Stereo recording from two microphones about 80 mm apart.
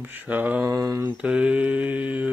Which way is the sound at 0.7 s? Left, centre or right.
Right.